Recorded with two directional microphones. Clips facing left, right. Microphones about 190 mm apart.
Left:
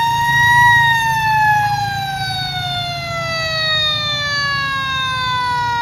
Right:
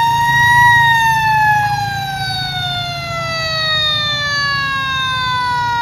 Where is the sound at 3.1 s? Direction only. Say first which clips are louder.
Even; 20° left (ahead or behind).